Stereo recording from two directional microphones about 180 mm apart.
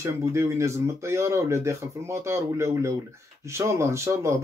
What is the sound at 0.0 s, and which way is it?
Speech, 15° right (ahead or behind).